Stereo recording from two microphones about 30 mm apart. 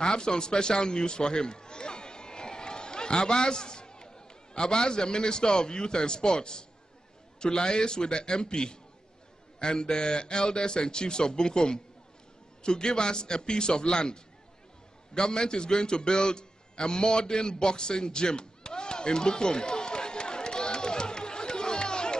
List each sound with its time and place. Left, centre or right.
0.0 s a man's voice: left
15.1 s music: left